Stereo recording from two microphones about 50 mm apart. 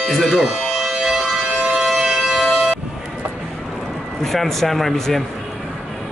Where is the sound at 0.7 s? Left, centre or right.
Centre.